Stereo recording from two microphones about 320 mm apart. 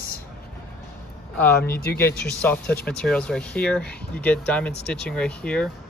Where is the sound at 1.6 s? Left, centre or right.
Left.